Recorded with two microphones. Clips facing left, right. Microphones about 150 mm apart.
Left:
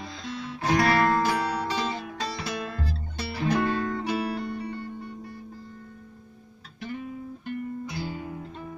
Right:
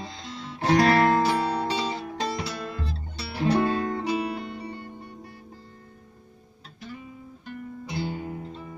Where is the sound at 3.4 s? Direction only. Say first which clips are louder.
Right 2 dB; 25° right (ahead or behind).